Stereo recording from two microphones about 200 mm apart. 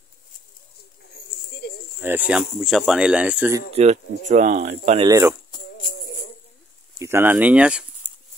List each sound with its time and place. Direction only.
1.1 s a sound: 55° left (ahead or behind)
2.0 s speech: 10° right (ahead or behind)
3.7 s speech: 35° right (ahead or behind)
5.0 s speech: 15° right (ahead or behind)
7.0 s speech: 10° right (ahead or behind)